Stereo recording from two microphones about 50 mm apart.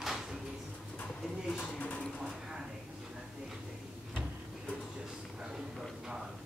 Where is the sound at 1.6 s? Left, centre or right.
Left.